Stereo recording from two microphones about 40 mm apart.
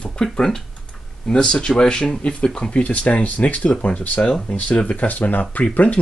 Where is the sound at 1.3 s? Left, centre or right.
Left.